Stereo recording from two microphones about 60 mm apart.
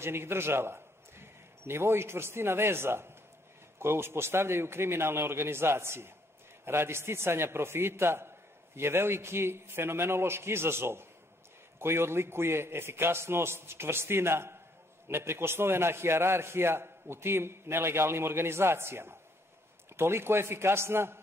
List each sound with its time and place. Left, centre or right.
0.0 s a man's voice: right